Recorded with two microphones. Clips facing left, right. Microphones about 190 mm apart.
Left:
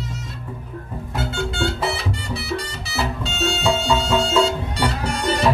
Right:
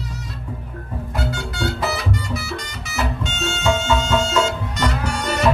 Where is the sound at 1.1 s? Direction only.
25° left (ahead or behind).